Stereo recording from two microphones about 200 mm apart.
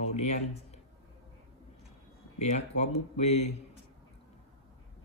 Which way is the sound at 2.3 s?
35° left (ahead or behind).